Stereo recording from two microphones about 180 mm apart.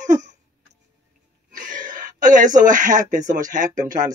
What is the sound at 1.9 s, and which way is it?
Speech, 45° right (ahead or behind).